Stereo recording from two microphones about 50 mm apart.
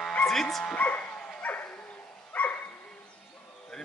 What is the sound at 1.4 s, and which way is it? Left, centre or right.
Dog, left.